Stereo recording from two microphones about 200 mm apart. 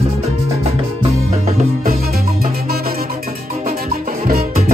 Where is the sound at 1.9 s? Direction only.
50° right (ahead or behind).